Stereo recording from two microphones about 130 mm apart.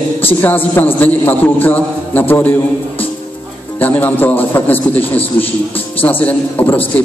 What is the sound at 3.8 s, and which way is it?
A man's voice, 15° left (ahead or behind).